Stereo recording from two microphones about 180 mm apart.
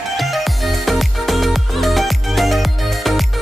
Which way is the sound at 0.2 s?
Centre (ahead or behind).